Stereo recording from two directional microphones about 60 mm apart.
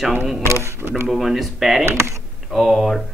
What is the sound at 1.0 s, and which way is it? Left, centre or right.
Speech, centre.